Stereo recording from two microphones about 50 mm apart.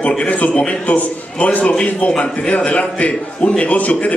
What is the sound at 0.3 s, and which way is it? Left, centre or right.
A man's voice, left.